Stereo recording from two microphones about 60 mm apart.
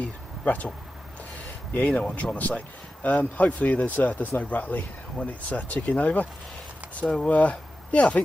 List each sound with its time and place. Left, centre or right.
0.0 s speech: left
1.7 s speech: left